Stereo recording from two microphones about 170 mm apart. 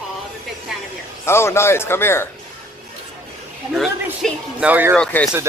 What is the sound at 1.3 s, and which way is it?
A man's voice, 15° left (ahead or behind).